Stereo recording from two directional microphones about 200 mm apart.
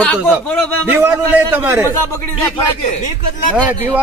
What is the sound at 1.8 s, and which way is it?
Speech, 15° left (ahead or behind).